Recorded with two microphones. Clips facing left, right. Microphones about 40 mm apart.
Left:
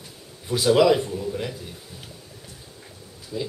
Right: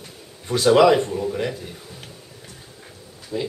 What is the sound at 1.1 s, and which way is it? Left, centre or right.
Speech, right.